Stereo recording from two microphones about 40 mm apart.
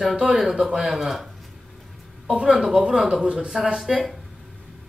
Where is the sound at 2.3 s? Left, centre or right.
Centre.